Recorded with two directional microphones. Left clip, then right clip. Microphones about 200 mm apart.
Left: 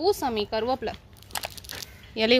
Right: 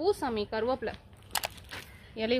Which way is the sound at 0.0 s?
20° left (ahead or behind).